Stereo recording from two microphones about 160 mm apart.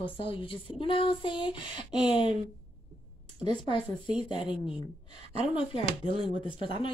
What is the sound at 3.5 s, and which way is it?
Speech, 30° left (ahead or behind).